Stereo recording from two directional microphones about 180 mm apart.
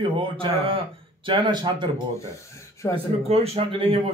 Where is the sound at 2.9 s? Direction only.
30° right (ahead or behind).